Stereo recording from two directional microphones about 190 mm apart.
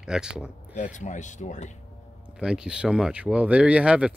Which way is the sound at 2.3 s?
5° right (ahead or behind).